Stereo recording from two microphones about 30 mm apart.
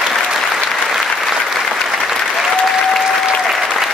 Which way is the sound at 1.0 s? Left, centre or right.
Centre.